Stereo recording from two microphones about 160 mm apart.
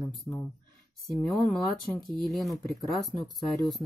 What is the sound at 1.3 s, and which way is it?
Speech, centre (ahead or behind).